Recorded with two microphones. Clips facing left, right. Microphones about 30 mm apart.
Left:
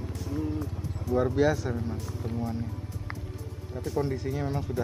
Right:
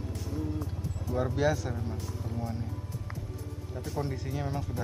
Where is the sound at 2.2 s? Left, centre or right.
Left.